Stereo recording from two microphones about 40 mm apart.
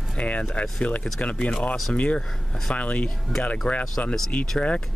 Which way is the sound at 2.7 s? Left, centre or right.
Left.